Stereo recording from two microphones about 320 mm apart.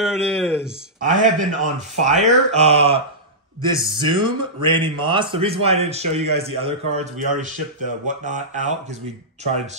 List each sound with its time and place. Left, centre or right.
0.0 s speech: centre
1.0 s a man's voice: right